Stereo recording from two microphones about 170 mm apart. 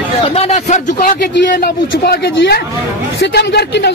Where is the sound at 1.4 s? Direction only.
80° left.